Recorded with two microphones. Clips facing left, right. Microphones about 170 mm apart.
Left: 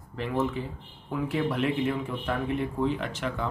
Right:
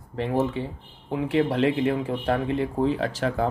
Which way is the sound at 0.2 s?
35° right (ahead or behind).